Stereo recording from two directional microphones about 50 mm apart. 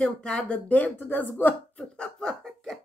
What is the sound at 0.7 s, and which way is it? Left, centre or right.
Speech, left.